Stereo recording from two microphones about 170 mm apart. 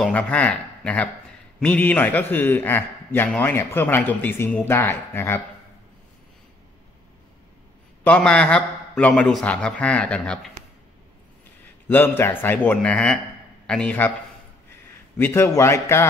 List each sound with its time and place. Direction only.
0.0 s a man's voice: 5° left (ahead or behind)
8.0 s a man's voice: 5° left (ahead or behind)
12.2 s a man's voice: 10° left (ahead or behind)
15.1 s a man's voice: 15° left (ahead or behind)